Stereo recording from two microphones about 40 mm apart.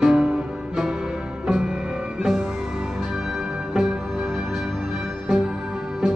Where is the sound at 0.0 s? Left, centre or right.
Centre.